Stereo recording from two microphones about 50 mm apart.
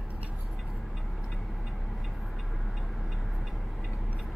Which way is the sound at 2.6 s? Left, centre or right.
Centre.